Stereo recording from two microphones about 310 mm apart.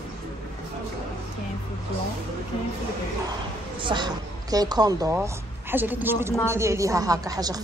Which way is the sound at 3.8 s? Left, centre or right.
Centre.